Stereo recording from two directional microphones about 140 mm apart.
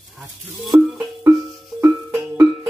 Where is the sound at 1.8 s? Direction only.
20° right (ahead or behind).